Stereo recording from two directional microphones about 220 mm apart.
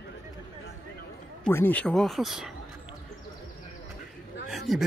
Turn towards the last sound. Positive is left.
turn(degrees=0)  # may be behind; listen again after turning